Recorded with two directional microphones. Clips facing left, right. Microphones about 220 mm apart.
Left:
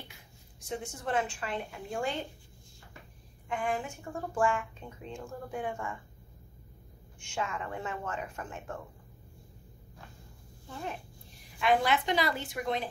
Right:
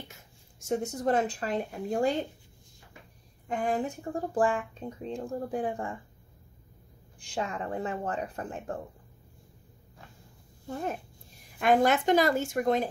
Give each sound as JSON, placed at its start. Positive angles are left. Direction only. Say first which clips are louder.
{"t": 0.1, "sound": "speech", "louder": "right 2 dB", "side_deg": -45}
{"t": 3.4, "sound": "speech", "louder": "right 4 dB", "side_deg": -40}
{"t": 7.2, "sound": "speech", "louder": "right 3 dB", "side_deg": -35}
{"t": 10.7, "sound": "a woman's voice", "louder": "right 6 dB", "side_deg": -45}